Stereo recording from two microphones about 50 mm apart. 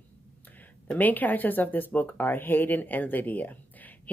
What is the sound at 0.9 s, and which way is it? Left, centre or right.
Speech, left.